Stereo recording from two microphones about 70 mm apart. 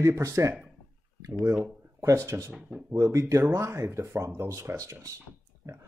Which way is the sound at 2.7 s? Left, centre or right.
Right.